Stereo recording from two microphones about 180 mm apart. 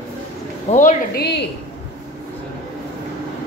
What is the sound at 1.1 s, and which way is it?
Speech, 65° left (ahead or behind).